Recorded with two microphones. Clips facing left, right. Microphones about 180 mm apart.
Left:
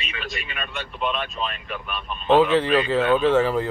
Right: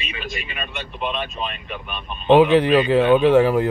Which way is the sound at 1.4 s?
20° right (ahead or behind).